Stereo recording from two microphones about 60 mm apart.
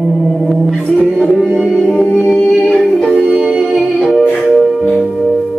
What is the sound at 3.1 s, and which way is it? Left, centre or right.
Music, centre.